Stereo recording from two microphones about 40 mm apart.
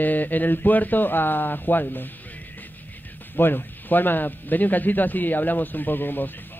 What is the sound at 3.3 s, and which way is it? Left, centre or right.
Speech, left.